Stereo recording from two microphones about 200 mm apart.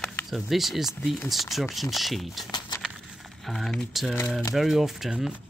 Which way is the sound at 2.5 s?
20° left (ahead or behind).